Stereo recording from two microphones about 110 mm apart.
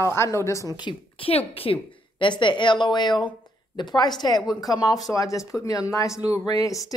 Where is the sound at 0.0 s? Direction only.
25° left (ahead or behind).